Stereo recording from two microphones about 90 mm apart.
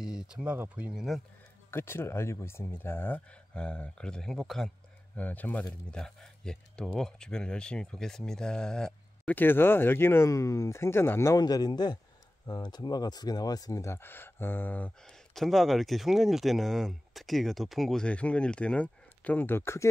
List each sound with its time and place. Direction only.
0.0 s a sound: 10° right (ahead or behind)
0.7 s speech: 15° right (ahead or behind)
1.7 s speech: 25° left (ahead or behind)
3.5 s speech: 10° left (ahead or behind)
5.1 s speech: 20° left (ahead or behind)
5.9 s speech: 5° left (ahead or behind)
9.3 s speech: 25° left (ahead or behind)
11.3 s speech: 45° left (ahead or behind); by 14.9 s 20° left (ahead or behind)
15.0 s speech: 5° left (ahead or behind); by 19.9 s 30° left (ahead or behind)